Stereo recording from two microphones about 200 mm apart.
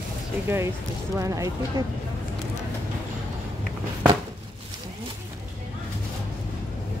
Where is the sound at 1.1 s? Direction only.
15° right (ahead or behind).